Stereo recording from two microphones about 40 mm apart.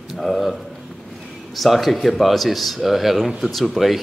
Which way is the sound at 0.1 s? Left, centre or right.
Centre.